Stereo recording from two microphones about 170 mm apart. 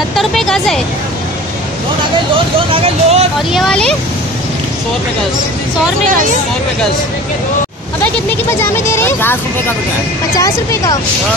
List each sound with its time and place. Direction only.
0.1 s vehicle: centre (ahead or behind)
2.7 s speech: 40° right (ahead or behind)
3.5 s speech: 5° left (ahead or behind)
8.5 s speech: 15° left (ahead or behind)
10.4 s speech: 20° left (ahead or behind)